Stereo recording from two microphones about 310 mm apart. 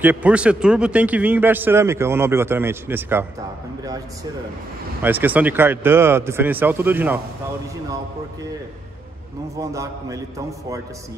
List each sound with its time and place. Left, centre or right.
0.0 s speech: centre
5.0 s speech: centre
9.6 s speech: centre